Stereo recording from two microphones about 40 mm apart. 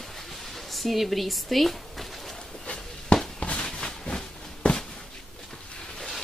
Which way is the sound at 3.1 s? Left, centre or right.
Left.